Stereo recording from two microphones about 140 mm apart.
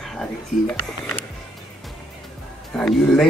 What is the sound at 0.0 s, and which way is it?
Speech, 5° left (ahead or behind).